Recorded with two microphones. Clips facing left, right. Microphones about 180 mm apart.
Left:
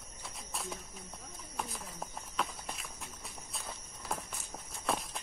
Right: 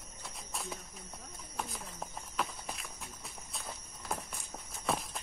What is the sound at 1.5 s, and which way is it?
Walk, centre (ahead or behind).